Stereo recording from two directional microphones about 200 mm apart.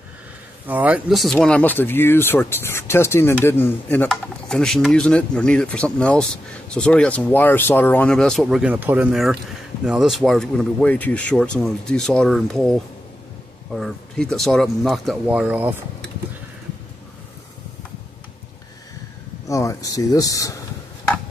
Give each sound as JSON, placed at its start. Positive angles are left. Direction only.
{"t": 0.7, "sound": "speech", "side_deg": -10}
{"t": 13.7, "sound": "speech", "side_deg": 0}
{"t": 19.4, "sound": "speech", "side_deg": 15}